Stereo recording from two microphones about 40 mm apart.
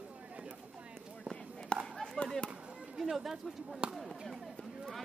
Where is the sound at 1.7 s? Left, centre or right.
Left.